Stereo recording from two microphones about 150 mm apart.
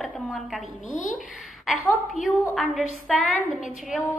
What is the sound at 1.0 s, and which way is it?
Speech, 60° left (ahead or behind).